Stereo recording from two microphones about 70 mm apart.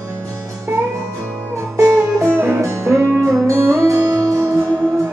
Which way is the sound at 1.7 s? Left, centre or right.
Right.